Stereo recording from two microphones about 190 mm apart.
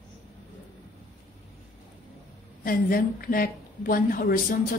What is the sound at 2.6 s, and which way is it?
A woman's voice, 50° left (ahead or behind).